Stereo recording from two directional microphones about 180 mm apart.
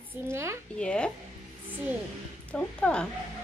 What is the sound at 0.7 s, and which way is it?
Speech, 5° left (ahead or behind).